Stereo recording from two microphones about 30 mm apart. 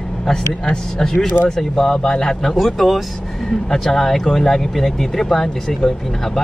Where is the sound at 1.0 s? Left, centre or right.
Centre.